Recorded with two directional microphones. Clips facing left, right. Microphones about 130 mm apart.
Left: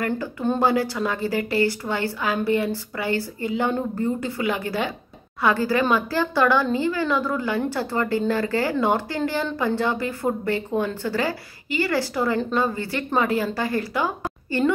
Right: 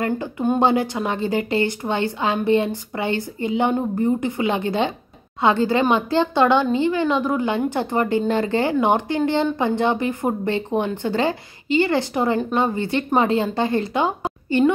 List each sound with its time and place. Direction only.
0.0 s speech: 20° right (ahead or behind)